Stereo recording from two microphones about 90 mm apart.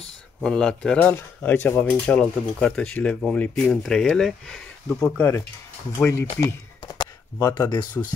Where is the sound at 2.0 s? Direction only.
10° left (ahead or behind).